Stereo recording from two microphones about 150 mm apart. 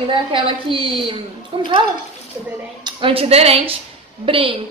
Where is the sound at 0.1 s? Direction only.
35° right (ahead or behind).